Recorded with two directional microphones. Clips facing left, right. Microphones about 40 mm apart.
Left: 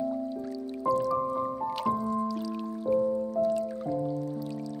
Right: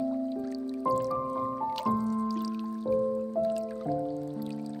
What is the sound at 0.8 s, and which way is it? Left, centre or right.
Music, centre.